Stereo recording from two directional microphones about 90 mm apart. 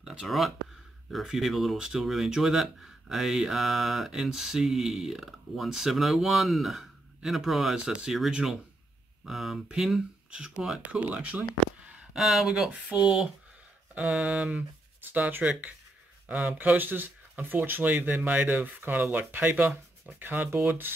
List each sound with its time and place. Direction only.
0.0 s speech: 5° right (ahead or behind)
11.8 s a sound: 10° right (ahead or behind)
12.2 s speech: centre (ahead or behind)
15.0 s speech: 20° right (ahead or behind)